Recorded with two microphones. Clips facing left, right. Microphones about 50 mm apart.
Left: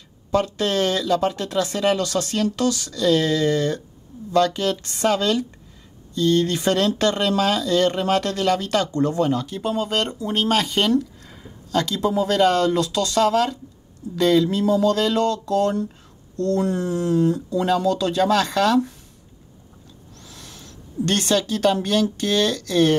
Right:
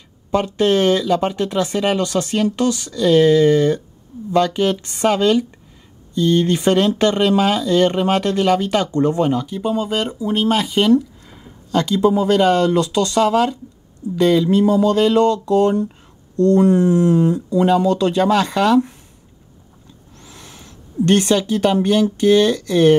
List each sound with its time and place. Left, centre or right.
0.3 s speech: right
4.8 s speech: right
18.2 s speech: centre
20.2 s speech: right